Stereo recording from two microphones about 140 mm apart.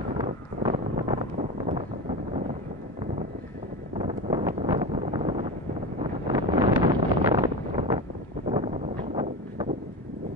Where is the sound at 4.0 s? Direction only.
55° right (ahead or behind).